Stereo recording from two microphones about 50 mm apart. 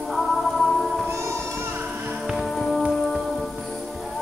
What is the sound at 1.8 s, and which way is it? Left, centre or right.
Music, right.